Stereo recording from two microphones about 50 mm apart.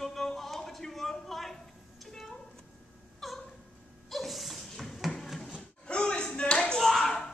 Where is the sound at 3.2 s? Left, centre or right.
Centre.